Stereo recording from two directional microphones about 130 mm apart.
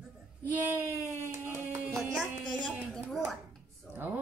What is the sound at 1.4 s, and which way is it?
Music, 15° right (ahead or behind).